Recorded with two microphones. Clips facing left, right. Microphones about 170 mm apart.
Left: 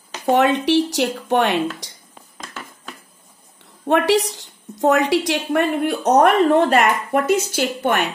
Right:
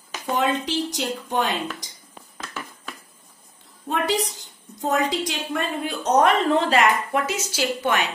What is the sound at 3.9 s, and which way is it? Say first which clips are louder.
A woman's voice: left 7 dB; 70° left (ahead or behind).